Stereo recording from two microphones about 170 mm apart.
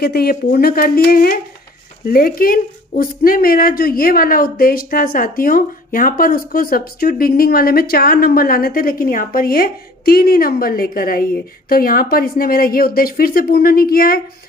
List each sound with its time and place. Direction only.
0.0 s speech: 65° left (ahead or behind)